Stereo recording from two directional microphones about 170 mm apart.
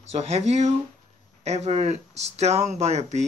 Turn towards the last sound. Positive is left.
turn(degrees=-40)  # may be behind; listen again after turning